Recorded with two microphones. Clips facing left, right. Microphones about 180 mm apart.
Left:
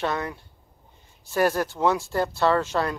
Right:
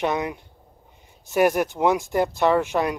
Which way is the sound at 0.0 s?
15° right (ahead or behind).